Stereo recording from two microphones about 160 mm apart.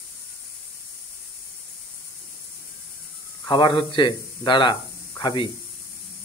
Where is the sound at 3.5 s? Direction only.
30° left (ahead or behind).